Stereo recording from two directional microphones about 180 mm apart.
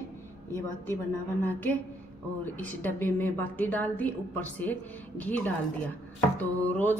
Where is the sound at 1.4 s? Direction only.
10° left (ahead or behind).